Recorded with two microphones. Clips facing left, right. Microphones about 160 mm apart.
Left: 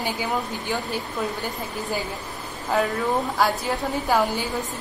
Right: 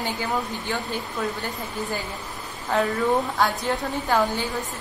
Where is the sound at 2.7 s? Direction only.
10° left (ahead or behind).